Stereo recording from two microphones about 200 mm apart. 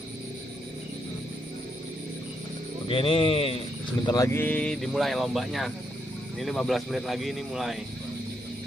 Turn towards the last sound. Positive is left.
turn(degrees=0)  # may be behind; listen again after turning